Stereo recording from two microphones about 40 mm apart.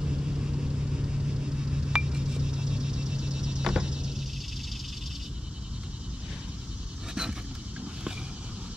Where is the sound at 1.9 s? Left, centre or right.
Right.